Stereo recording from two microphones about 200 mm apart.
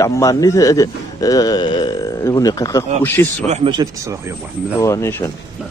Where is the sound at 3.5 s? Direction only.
30° right (ahead or behind).